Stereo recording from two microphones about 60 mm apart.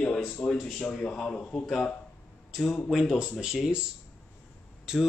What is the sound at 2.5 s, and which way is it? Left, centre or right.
Speech, centre.